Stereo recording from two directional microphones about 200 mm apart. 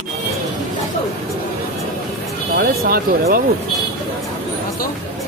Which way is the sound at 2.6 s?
50° right (ahead or behind).